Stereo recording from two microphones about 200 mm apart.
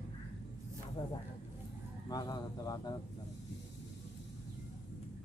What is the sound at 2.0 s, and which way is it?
Speech, 20° left (ahead or behind).